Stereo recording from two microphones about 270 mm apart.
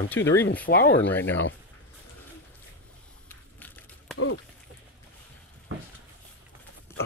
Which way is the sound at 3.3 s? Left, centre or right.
Centre.